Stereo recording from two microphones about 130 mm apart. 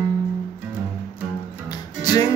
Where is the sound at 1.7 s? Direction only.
30° left (ahead or behind).